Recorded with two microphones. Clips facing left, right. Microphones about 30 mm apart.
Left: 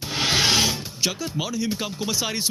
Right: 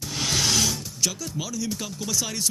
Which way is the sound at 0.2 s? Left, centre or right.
Left.